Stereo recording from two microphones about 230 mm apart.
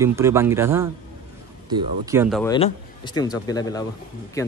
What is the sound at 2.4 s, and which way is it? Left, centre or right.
A man's voice, left.